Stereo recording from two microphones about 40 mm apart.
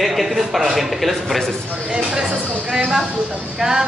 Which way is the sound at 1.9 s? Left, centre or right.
Right.